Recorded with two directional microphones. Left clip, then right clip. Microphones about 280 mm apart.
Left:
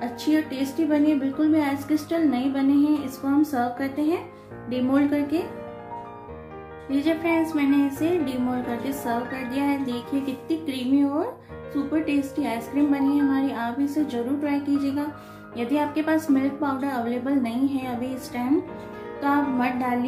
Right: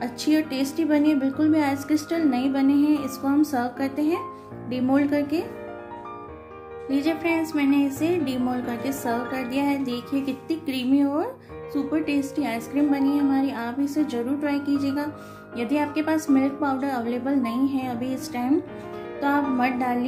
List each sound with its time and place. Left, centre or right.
0.0 s a woman's voice: right
6.9 s a woman's voice: right